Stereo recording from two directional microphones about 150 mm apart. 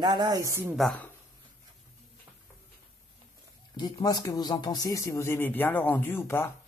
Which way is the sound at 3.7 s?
25° left (ahead or behind).